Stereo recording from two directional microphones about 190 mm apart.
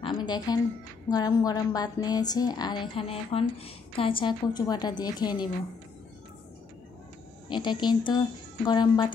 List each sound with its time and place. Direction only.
0.0 s music: 25° left (ahead or behind)
1.1 s a woman's voice: 20° left (ahead or behind)
7.4 s a woman's voice: 25° left (ahead or behind)